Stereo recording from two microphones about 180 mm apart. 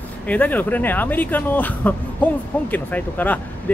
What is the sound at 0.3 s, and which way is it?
Speech, 10° left (ahead or behind).